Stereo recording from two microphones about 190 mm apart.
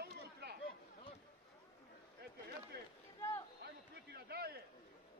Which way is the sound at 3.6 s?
60° right (ahead or behind).